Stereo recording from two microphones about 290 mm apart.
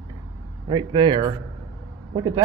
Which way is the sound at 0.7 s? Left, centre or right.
Centre.